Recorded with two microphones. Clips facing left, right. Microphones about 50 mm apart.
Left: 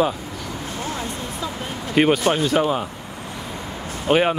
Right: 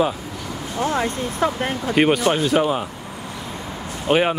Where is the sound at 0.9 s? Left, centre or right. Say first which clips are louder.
Right 6 dB; right.